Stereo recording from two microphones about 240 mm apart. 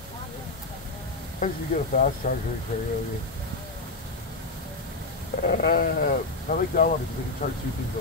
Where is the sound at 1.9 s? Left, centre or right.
Left.